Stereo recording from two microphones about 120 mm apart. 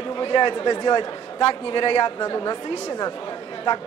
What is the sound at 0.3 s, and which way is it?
A man's voice, 40° left (ahead or behind).